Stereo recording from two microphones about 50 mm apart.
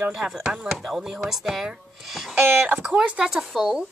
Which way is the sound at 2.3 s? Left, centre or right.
Right.